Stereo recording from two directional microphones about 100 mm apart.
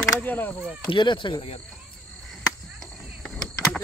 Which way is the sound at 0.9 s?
55° left (ahead or behind).